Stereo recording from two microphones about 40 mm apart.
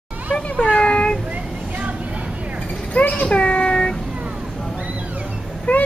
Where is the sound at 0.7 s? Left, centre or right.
Left.